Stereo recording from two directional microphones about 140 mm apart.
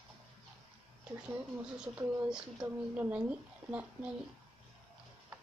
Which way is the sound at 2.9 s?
10° right (ahead or behind).